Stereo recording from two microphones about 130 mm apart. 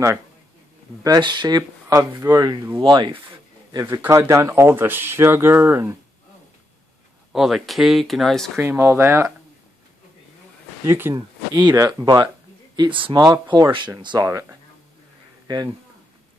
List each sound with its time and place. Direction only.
1.0 s speech: 30° right (ahead or behind)
2.8 s speech: 40° right (ahead or behind)
3.8 s speech: 20° right (ahead or behind)
7.3 s speech: 5° right (ahead or behind)
8.5 s speech: 20° right (ahead or behind)
10.9 s speech: 20° right (ahead or behind)
12.7 s speech: 35° right (ahead or behind)